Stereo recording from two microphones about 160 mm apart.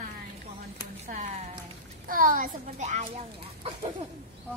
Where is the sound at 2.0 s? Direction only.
60° right (ahead or behind).